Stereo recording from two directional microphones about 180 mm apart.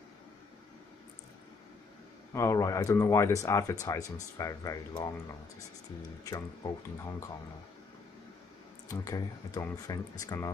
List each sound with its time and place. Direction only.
2.3 s speech: 15° left (ahead or behind)
6.2 s speech: 20° left (ahead or behind)
8.8 s speech: 20° left (ahead or behind)